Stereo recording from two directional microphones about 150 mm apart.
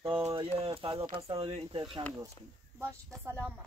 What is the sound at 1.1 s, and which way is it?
Speech, 35° right (ahead or behind).